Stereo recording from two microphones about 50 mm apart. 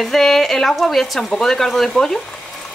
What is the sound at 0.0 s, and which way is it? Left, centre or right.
Speech, centre.